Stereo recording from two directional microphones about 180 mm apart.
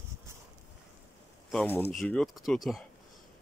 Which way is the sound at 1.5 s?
10° left (ahead or behind).